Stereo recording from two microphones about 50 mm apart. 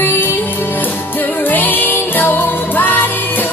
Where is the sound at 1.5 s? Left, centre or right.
Left.